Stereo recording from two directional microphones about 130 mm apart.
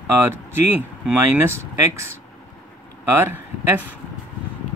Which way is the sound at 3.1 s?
20° right (ahead or behind).